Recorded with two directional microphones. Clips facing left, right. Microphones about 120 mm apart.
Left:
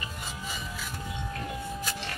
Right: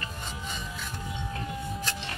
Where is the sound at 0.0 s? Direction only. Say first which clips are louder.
Even; 5° left (ahead or behind).